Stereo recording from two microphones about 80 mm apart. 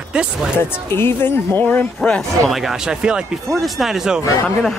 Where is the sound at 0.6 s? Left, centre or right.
Left; by 2.5 s centre.